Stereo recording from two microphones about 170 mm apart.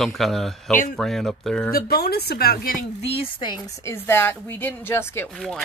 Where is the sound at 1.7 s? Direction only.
65° left (ahead or behind).